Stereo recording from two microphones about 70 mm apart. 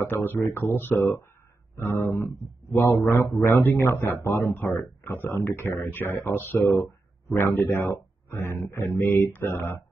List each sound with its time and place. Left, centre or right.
0.0 s a man's voice: left
6.8 s a sound: left
7.6 s a man's voice: left